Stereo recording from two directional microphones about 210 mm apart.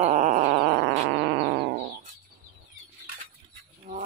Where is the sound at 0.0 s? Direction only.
35° right (ahead or behind).